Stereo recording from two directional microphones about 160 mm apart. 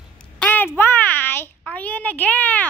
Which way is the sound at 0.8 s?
10° left (ahead or behind).